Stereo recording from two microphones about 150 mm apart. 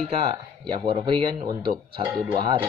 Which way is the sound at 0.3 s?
35° right (ahead or behind).